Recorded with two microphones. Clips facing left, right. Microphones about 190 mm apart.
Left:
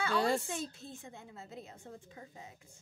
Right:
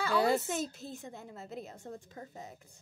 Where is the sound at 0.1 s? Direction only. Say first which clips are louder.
Right 4 dB; 5° right (ahead or behind).